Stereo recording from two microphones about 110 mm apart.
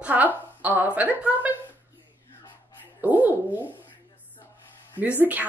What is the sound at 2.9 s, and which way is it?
Speech, 15° right (ahead or behind).